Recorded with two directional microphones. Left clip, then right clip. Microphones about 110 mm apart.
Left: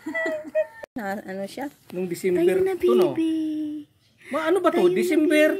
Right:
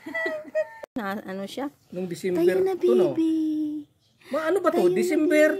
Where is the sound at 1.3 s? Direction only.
45° right (ahead or behind).